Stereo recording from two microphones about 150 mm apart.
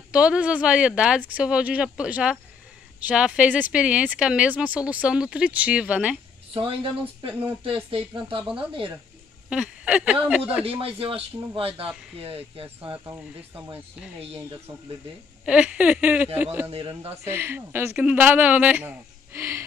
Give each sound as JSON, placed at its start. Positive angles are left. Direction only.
{"t": 0.1, "sound": "speech", "side_deg": -5}
{"t": 6.5, "sound": "a man's voice", "side_deg": -35}
{"t": 9.5, "sound": "a sound", "side_deg": -10}
{"t": 10.2, "sound": "speech", "side_deg": -10}
{"t": 10.6, "sound": "a man's voice", "side_deg": -40}
{"t": 15.4, "sound": "speech", "side_deg": -5}